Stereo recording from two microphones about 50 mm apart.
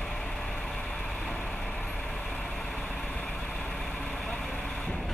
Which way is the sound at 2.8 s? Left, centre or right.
Left.